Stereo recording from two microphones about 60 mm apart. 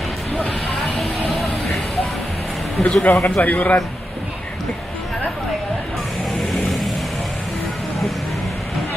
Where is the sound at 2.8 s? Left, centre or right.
Centre.